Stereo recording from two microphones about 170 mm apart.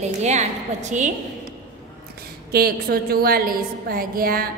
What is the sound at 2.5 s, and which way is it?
A woman's voice, 65° right (ahead or behind).